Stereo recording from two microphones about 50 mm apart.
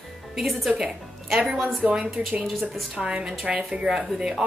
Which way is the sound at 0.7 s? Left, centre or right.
Centre.